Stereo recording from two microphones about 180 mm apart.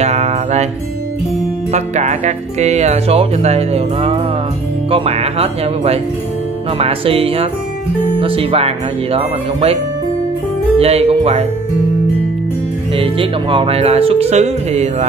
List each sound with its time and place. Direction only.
0.0 s music: 40° right (ahead or behind)
1.7 s speech: 40° right (ahead or behind)
10.8 s speech: 35° right (ahead or behind)
12.9 s speech: 30° right (ahead or behind)